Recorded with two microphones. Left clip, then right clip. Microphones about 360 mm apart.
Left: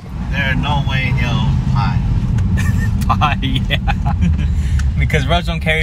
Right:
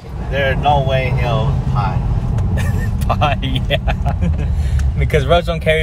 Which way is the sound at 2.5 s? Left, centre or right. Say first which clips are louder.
Left 2 dB; centre.